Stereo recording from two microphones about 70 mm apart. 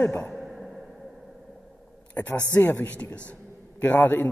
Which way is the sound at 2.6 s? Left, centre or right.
Left.